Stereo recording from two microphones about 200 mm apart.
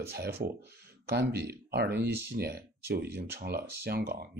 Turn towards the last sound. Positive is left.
turn(degrees=-50)  # may be behind; listen again after turning